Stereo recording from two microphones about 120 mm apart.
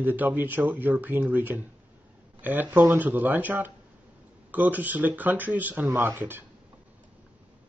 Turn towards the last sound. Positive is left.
turn(degrees=-20)  # may be behind; listen again after turning